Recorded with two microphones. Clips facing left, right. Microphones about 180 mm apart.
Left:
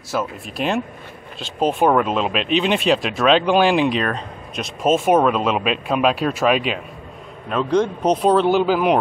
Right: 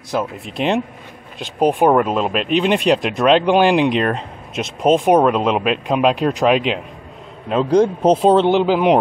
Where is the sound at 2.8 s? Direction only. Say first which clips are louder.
Right 2 dB; 15° right (ahead or behind).